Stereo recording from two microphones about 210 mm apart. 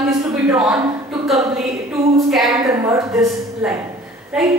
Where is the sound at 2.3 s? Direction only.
Centre (ahead or behind).